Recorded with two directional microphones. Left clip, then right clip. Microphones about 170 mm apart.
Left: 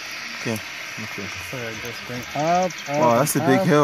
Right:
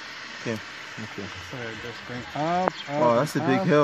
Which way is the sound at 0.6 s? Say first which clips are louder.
Left 6 dB; 55° right (ahead or behind).